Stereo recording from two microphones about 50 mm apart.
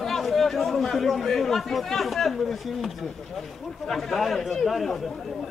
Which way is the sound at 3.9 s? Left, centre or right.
Centre.